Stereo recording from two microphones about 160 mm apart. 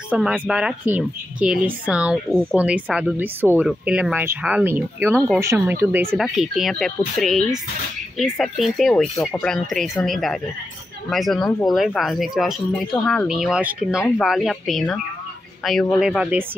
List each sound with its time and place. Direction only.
0.3 s speech: 5° right (ahead or behind)
6.1 s speech: centre (ahead or behind)